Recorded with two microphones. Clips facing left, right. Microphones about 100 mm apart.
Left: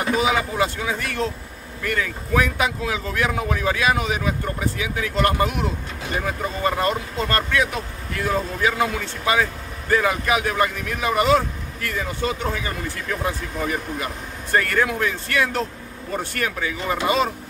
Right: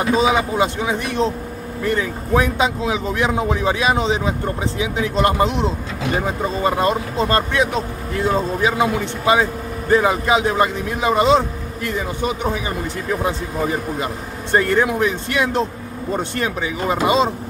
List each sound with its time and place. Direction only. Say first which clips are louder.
0.0 s speech: right 4 dB; 20° right (ahead or behind)